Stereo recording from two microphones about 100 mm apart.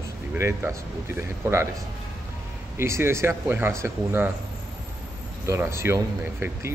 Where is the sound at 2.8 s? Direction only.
25° right (ahead or behind).